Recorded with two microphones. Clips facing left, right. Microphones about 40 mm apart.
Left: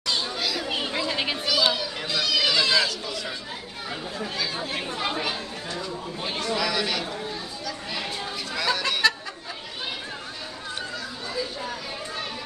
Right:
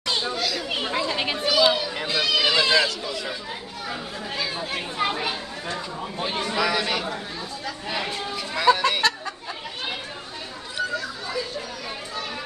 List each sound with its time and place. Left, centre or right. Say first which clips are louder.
0.0 s chatter: right 2 dB; right
0.4 s chatter: right 1 dB; centre
0.9 s a sound: right 3 dB; centre
1.4 s speech: right 5 dB; centre
4.6 s speech: right 3 dB; centre
8.5 s speech: right 7 dB; centre